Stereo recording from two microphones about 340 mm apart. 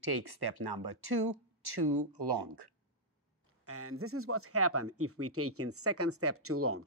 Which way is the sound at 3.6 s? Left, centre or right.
Right.